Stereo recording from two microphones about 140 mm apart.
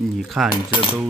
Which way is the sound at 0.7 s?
40° left (ahead or behind).